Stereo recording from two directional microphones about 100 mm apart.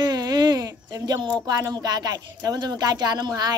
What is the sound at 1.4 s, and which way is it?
Speech, 40° right (ahead or behind).